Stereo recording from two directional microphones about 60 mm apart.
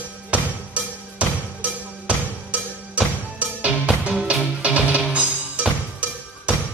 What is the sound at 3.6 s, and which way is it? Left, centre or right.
Music, right.